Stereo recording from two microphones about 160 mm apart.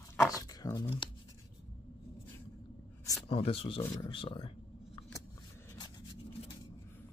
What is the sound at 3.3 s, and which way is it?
Speech, 35° left (ahead or behind).